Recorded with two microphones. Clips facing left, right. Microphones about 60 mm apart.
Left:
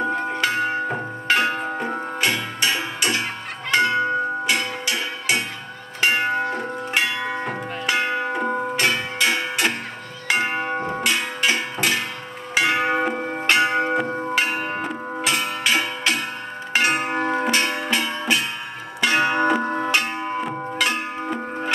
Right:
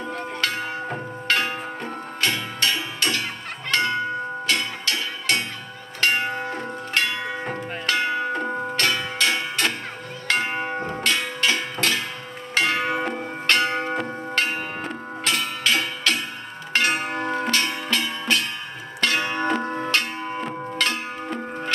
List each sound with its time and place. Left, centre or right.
0.4 s music: left
6.5 s bell: centre
7.3 s music: centre
7.9 s music: centre
12.5 s tick-tock: centre
13.5 s church bell: centre
14.3 s a sound: centre
16.7 s music: centre